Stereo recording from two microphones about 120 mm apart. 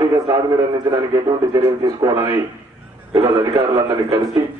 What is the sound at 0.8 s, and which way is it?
A man's voice, 35° right (ahead or behind).